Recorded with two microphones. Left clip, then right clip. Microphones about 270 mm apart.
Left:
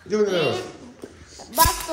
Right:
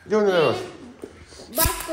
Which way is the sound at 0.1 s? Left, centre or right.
Centre.